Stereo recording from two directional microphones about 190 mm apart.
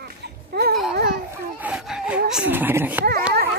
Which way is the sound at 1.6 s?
5° right (ahead or behind).